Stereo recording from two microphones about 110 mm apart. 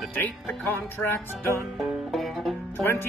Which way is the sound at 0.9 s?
20° left (ahead or behind).